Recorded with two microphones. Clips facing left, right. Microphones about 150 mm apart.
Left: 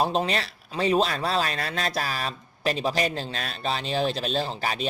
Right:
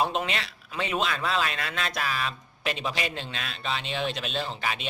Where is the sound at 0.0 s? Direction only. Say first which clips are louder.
Left 3 dB; 35° left (ahead or behind).